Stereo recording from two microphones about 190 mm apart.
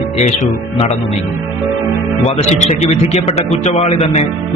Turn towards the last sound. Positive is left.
turn(degrees=30)  # may be behind; listen again after turning